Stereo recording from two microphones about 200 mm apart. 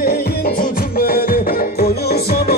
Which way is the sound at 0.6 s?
50° left (ahead or behind).